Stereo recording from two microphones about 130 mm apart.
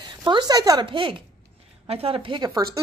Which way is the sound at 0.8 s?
40° right (ahead or behind).